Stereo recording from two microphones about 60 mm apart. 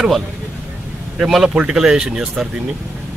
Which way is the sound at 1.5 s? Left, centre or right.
Centre.